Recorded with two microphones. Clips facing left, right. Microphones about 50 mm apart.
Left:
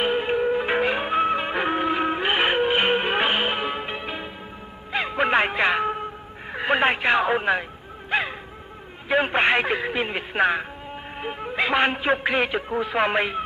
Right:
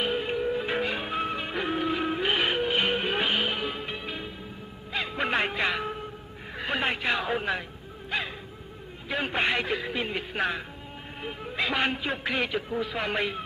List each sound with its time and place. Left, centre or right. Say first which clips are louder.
0.0 s music: left 6 dB; left
6.5 s speech: left 8 dB; left
8.1 s dog: left 7 dB; left
9.1 s a man's voice: left 7 dB; left